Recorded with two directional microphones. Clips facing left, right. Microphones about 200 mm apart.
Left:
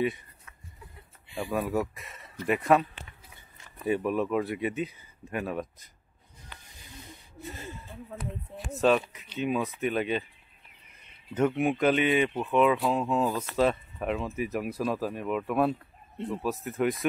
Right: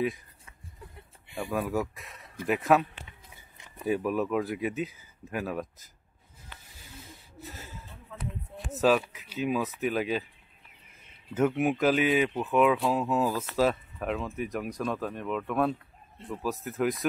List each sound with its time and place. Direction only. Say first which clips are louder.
0.0 s speech: left 1 dB; centre (ahead or behind)
1.3 s speech: left 1 dB; centre (ahead or behind)
3.1 s a sound: even; 15° right (ahead or behind)
3.8 s speech: left 1 dB; centre (ahead or behind)
7.0 s snort: left 2 dB; centre (ahead or behind)
8.5 s speech: even; centre (ahead or behind)
11.3 s speech: even; 5° right (ahead or behind)